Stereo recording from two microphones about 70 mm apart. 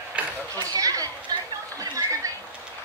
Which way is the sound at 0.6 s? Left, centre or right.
Right.